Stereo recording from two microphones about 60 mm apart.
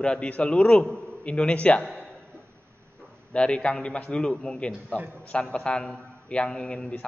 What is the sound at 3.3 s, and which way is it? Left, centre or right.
A man's voice, centre.